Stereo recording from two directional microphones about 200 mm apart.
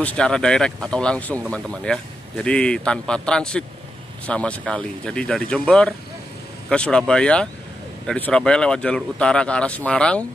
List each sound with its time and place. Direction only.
0.0 s a man's voice: 5° left (ahead or behind)